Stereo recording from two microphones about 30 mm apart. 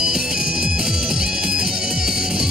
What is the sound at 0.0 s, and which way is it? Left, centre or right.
Music, right.